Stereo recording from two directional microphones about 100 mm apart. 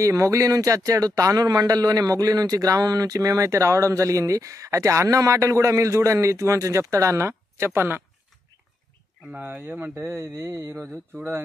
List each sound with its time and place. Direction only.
0.0 s speech: 30° right (ahead or behind)
9.3 s speech: 20° right (ahead or behind)